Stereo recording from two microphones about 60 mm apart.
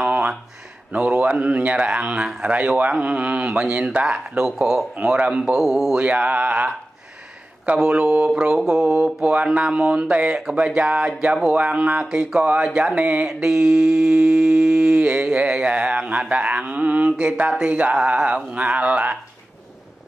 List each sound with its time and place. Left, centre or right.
0.1 s a sound: centre
0.9 s speech: right
4.6 s mantra: centre
5.0 s speech: centre
5.4 s a man's voice: centre
6.0 s speech: right
7.6 s mantra: centre
8.8 s speech: centre
13.3 s mantra: centre
15.0 s speech: centre